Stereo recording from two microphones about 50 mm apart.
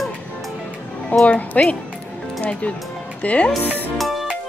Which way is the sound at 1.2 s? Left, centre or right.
Left.